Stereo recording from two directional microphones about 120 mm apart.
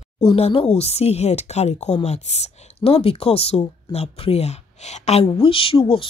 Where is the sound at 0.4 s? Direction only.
55° left (ahead or behind).